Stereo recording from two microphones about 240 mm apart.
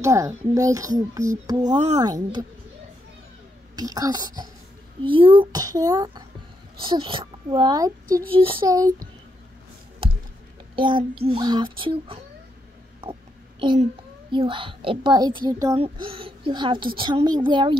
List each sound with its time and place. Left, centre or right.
0.0 s a child's voice: centre
3.7 s a child's voice: centre
10.8 s a child's voice: centre
13.0 s a sound: centre
14.3 s a child's voice: right